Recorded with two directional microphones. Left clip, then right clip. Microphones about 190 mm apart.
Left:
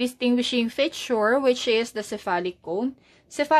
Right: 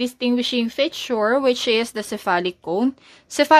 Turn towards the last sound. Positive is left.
turn(degrees=-35)  # may be behind; listen again after turning